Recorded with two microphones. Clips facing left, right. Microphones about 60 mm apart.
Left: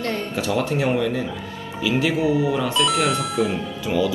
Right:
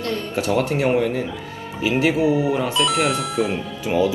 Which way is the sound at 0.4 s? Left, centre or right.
Right.